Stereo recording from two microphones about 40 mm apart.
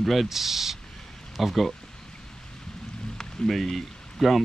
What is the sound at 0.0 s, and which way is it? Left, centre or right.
Speech, centre.